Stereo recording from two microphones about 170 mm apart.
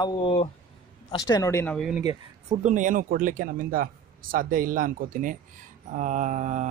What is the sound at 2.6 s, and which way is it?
Speech, 50° right (ahead or behind).